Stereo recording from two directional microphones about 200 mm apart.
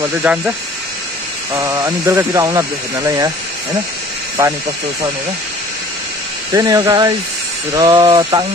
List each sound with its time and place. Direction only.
0.0 s speech: 10° right (ahead or behind)
1.5 s speech: 15° right (ahead or behind)
6.5 s speech: 20° right (ahead or behind)